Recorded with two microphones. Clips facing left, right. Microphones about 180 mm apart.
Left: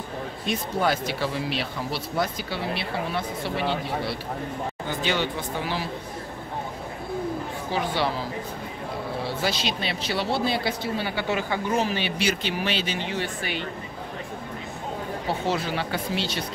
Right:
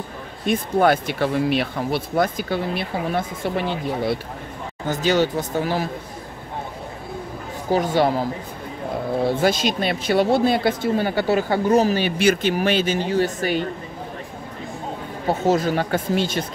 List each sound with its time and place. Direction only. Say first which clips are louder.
0.5 s speech: right 7 dB; 55° right (ahead or behind)
7.7 s speech: right 8 dB; 45° right (ahead or behind)
15.2 s speech: right 8 dB; 45° right (ahead or behind)